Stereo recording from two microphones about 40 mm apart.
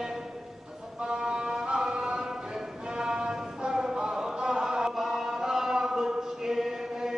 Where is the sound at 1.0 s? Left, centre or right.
Right.